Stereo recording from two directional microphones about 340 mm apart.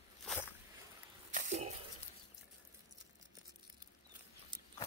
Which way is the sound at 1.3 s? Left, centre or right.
Centre.